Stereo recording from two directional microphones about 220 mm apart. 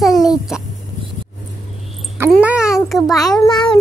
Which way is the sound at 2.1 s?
10° right (ahead or behind).